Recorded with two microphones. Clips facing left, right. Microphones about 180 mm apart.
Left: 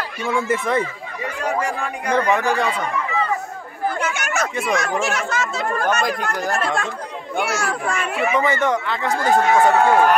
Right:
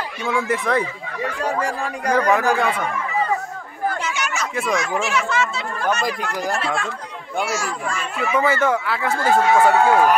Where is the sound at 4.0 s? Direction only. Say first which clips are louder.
Left 3 dB; 55° left (ahead or behind).